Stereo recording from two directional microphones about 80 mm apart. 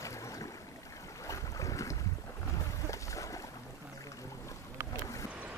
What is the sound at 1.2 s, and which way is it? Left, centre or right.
Boat, left.